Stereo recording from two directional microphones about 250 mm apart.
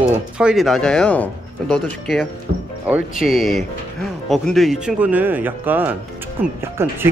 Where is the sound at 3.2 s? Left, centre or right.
Centre.